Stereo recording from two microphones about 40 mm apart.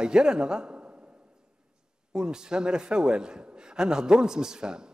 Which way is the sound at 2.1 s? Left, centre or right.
Centre.